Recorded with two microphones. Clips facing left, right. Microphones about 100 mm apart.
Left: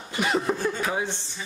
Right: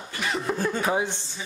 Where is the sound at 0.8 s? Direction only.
20° right (ahead or behind).